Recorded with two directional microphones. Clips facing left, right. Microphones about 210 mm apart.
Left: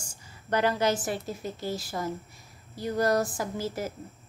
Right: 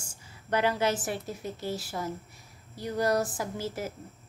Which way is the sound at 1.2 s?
35° left (ahead or behind).